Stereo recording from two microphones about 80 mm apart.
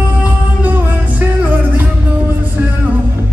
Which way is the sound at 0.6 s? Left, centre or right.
Right.